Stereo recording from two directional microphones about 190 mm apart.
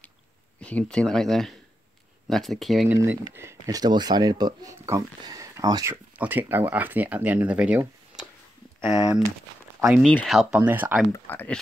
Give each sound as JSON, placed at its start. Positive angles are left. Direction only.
{"t": 0.6, "sound": "speech", "side_deg": 5}
{"t": 3.0, "sound": "speech", "side_deg": -15}
{"t": 8.8, "sound": "speech", "side_deg": -5}
{"t": 11.2, "sound": "speech", "side_deg": 10}